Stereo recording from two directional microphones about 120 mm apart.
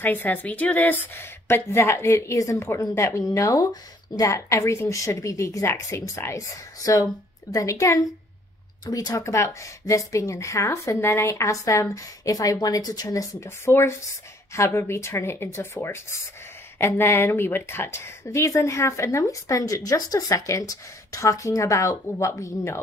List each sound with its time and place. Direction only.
0.0 s a woman's voice: 15° left (ahead or behind)